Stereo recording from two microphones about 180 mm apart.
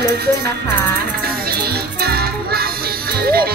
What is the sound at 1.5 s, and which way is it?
Music, 60° right (ahead or behind).